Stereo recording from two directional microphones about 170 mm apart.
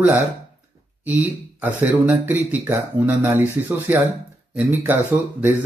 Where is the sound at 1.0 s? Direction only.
10° right (ahead or behind).